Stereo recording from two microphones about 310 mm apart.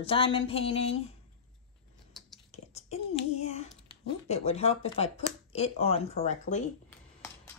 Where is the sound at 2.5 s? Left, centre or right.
Centre.